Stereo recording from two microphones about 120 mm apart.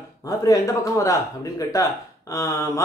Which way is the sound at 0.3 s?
30° left (ahead or behind).